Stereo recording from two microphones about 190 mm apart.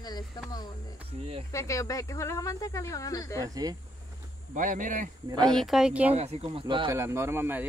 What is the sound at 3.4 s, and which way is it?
Speech, 20° right (ahead or behind).